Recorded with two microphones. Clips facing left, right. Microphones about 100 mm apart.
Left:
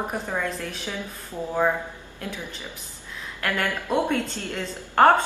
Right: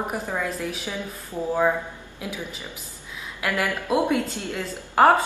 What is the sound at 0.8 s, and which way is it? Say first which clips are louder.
A woman's voice: right 1 dB; 15° right (ahead or behind).